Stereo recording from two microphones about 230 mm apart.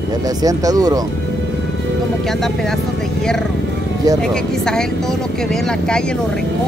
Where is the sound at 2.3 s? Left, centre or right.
Centre.